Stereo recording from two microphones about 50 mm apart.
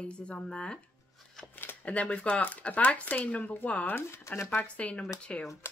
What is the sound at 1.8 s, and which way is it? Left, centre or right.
Speech, left.